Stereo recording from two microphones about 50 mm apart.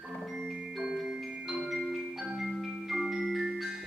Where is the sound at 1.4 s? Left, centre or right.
Centre.